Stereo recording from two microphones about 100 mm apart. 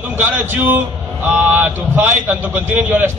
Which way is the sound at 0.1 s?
25° right (ahead or behind).